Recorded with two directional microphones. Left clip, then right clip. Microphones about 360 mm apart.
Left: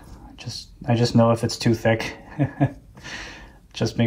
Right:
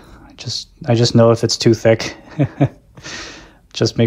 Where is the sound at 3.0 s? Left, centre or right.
Centre.